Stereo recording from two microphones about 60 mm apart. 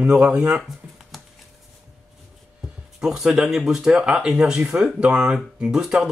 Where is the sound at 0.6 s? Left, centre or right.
Centre.